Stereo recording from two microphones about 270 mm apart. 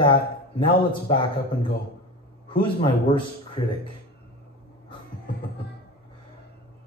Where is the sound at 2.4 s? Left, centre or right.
Centre.